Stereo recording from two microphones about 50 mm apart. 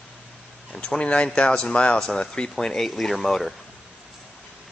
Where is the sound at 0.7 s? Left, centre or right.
Centre.